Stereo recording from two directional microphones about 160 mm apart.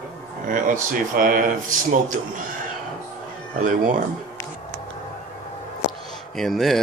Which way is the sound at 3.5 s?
55° right (ahead or behind).